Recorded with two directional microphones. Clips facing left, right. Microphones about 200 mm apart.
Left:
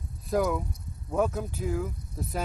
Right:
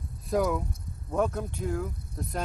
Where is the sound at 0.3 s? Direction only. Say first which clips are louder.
Even; centre (ahead or behind).